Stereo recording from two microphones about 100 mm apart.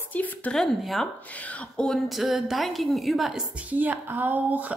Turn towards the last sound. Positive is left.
turn(degrees=-15)  # may be behind; listen again after turning